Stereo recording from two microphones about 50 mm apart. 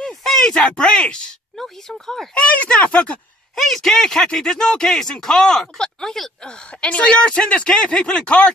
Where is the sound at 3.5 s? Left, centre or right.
Centre.